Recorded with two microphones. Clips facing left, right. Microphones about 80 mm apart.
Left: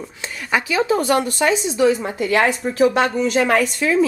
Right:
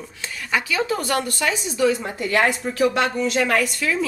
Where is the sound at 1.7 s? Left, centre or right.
Centre.